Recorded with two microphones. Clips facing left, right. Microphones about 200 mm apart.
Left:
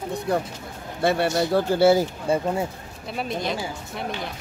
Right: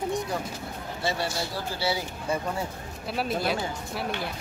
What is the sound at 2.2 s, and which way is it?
Speech, 25° left (ahead or behind).